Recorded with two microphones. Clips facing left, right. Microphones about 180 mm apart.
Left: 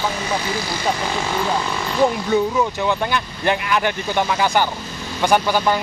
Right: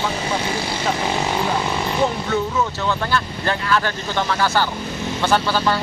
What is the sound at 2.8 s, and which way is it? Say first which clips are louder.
Speech: left 1 dB; 15° left (ahead or behind).